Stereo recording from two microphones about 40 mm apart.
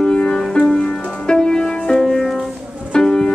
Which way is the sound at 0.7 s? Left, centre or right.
Left.